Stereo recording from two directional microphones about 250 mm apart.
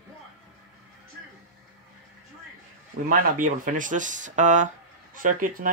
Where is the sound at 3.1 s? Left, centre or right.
Right.